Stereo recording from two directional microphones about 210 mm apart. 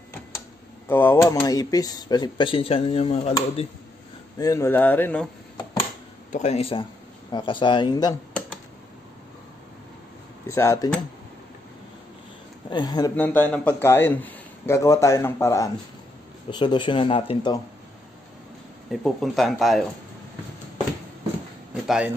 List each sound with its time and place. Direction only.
0.8 s speech: 10° left (ahead or behind); by 3.6 s 30° left (ahead or behind)
4.4 s a man's voice: 15° left (ahead or behind)
6.3 s speech: 30° left (ahead or behind)
10.5 s a man's voice: 15° left (ahead or behind)
12.6 s speech: 20° left (ahead or behind)
13.1 s a man's voice: 10° left (ahead or behind); by 17.6 s 25° left (ahead or behind)
18.9 s speech: centre (ahead or behind)
21.8 s speech: 5° right (ahead or behind)